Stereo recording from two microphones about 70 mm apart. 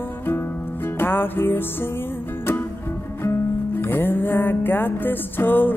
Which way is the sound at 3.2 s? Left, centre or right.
Left.